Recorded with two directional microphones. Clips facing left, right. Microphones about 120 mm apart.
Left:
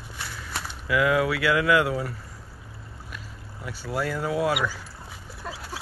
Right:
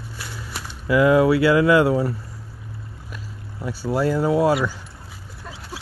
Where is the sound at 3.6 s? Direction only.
30° right (ahead or behind).